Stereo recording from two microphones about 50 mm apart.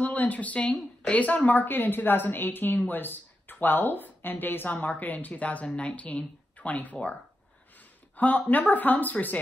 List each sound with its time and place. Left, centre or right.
0.0 s speech: left
8.2 s speech: left